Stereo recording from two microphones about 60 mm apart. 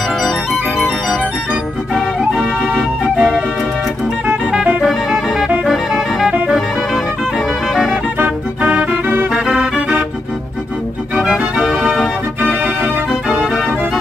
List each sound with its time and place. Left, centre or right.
0.2 s music: centre
2.6 s music: centre
5.7 s music: centre
7.9 s music: right
9.3 s music: centre
11.3 s music: centre
11.8 s organ: centre
12.4 s organ: centre